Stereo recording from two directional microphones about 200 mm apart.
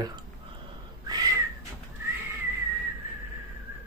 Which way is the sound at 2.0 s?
10° right (ahead or behind).